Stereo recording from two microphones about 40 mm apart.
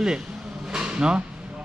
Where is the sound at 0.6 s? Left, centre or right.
Right.